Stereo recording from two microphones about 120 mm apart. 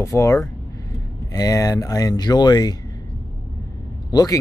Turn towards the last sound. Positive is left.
turn(degrees=30)  # may be behind; listen again after turning